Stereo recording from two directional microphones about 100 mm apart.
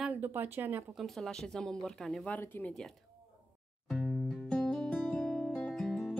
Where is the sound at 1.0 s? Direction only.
5° left (ahead or behind).